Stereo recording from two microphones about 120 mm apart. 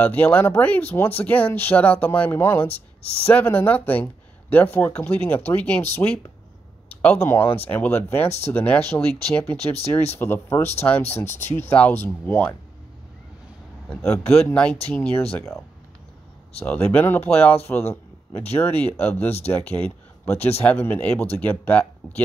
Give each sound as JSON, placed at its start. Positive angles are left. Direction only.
{"t": 0.0, "sound": "speech", "side_deg": 15}
{"t": 6.9, "sound": "a sound", "side_deg": 10}
{"t": 7.2, "sound": "speech", "side_deg": 20}
{"t": 14.3, "sound": "speech", "side_deg": 10}
{"t": 17.6, "sound": "a sound", "side_deg": 20}
{"t": 18.5, "sound": "speech", "side_deg": 15}